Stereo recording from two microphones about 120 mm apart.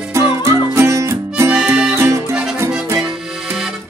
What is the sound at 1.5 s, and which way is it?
Harmonica, 10° right (ahead or behind).